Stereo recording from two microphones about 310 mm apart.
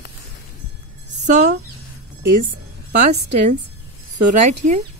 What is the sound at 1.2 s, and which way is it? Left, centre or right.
Speech, right.